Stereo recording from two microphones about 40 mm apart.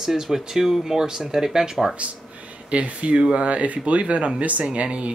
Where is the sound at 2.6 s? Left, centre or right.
Right.